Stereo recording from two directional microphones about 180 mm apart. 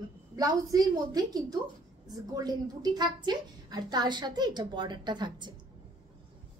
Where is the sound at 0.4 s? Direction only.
20° right (ahead or behind).